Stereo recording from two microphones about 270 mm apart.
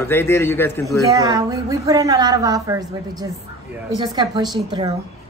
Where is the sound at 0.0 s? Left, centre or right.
Centre.